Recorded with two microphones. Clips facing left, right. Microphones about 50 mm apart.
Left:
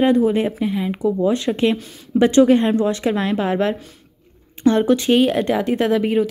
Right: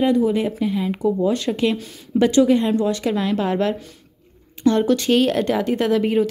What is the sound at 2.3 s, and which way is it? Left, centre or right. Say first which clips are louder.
A woman's voice: left 3 dB; left.